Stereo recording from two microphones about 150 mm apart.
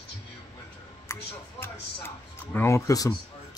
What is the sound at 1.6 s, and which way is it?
Music, 15° left (ahead or behind).